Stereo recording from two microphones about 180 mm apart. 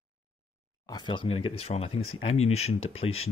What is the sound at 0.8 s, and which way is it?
Speech, 25° left (ahead or behind).